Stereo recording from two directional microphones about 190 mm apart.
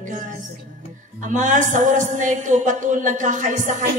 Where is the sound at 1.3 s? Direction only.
40° right (ahead or behind).